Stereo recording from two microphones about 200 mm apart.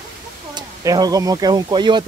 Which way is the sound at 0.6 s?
20° right (ahead or behind).